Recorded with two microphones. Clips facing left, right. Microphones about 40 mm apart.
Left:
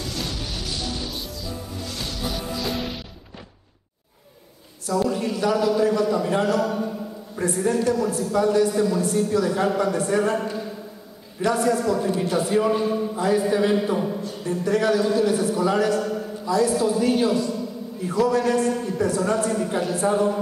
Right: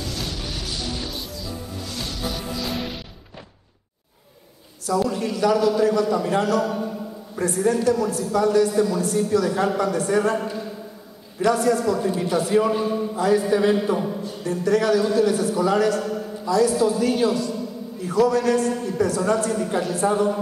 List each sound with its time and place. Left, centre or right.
0.1 s music: centre
1.8 s music: centre
4.9 s a man's voice: centre
14.4 s a man's voice: centre
16.4 s a man's voice: centre
16.7 s a man's voice: centre
18.5 s a man's voice: centre